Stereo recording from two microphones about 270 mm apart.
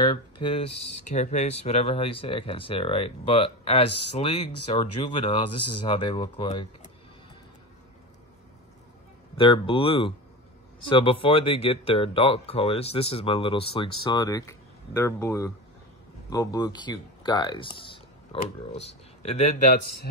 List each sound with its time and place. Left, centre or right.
0.0 s speech: centre
9.4 s speech: centre